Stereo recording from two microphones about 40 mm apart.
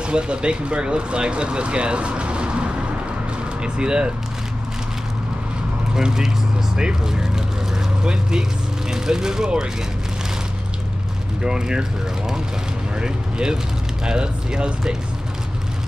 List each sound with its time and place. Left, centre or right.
0.0 s speech: right
5.9 s speech: centre
11.4 s speech: right
13.0 s speech: centre